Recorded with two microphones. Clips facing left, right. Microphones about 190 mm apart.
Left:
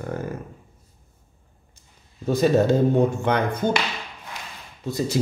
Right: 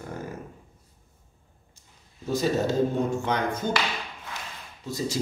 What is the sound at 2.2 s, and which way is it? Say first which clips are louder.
Music: left 6 dB; 60° left (ahead or behind).